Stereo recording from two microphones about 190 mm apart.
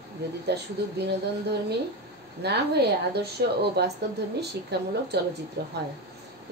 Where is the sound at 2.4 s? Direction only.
60° right (ahead or behind).